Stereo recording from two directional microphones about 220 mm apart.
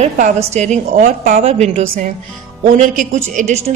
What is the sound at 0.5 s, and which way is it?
A woman's voice, 30° right (ahead or behind).